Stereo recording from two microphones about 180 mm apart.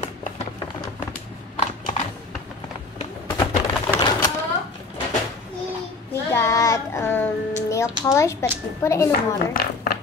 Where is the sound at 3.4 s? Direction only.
25° left (ahead or behind).